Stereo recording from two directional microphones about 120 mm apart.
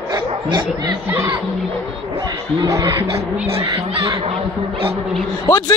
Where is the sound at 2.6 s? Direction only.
25° right (ahead or behind).